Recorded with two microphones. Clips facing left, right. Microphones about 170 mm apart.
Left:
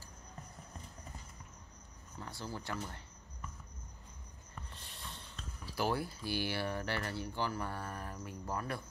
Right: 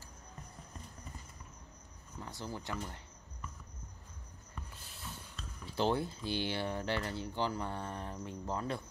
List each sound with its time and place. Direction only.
2.2 s speech: 20° right (ahead or behind)
4.7 s a sound: 5° right (ahead or behind)
5.8 s speech: 20° right (ahead or behind)